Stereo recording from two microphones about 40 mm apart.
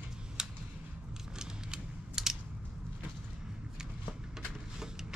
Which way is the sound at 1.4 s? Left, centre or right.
Centre.